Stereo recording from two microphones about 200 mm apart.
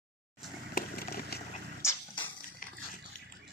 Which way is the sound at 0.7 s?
50° left (ahead or behind).